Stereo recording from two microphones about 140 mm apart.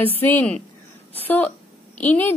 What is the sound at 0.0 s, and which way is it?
A woman's voice, 15° left (ahead or behind).